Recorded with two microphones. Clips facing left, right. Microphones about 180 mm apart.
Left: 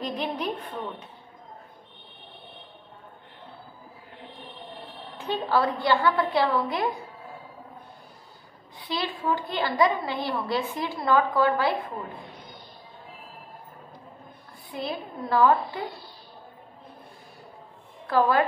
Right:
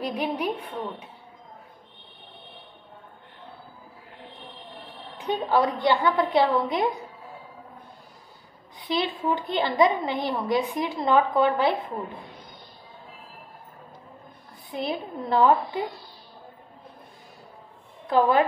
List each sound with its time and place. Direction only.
0.0 s a woman's voice: 10° right (ahead or behind)
5.1 s a woman's voice: 15° right (ahead or behind)
8.7 s a woman's voice: 20° right (ahead or behind)
14.7 s a woman's voice: 20° right (ahead or behind)
18.0 s a woman's voice: 20° right (ahead or behind)